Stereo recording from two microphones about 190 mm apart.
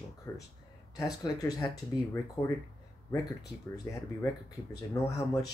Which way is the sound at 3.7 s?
20° left (ahead or behind).